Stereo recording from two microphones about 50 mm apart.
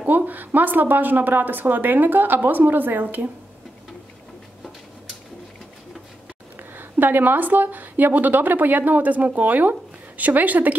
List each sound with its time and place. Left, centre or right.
0.0 s speech: right
6.7 s speech: right